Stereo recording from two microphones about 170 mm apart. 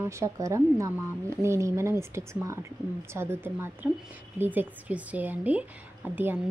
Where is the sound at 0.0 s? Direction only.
15° right (ahead or behind).